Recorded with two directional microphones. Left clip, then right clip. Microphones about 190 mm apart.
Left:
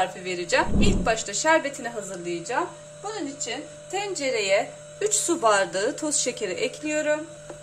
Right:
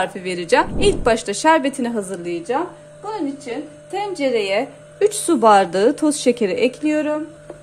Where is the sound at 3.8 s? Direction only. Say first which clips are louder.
Right 6 dB; 25° right (ahead or behind).